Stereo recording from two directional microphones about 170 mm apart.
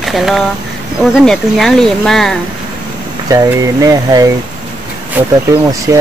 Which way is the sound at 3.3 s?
20° right (ahead or behind).